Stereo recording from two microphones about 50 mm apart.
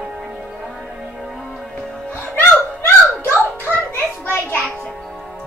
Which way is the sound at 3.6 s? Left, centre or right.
Left.